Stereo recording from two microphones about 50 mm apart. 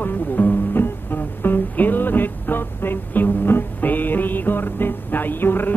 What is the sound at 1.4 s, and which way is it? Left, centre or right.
Music, left.